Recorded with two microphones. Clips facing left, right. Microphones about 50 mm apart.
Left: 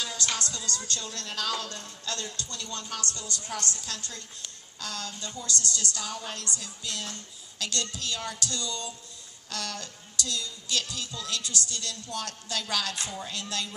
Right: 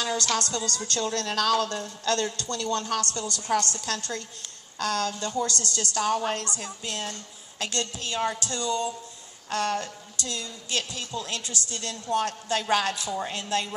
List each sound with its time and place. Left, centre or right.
0.0 s music: right
0.4 s a woman's voice: right
5.4 s speech: right
6.4 s a woman's voice: right